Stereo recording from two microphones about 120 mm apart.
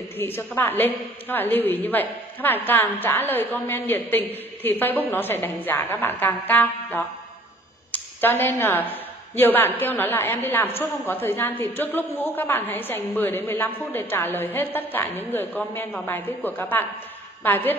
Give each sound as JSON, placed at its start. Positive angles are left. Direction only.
{"t": 0.2, "sound": "a woman's voice", "side_deg": 20}